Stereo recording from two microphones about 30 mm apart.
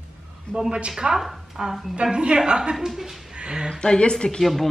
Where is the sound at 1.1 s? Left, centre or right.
Centre.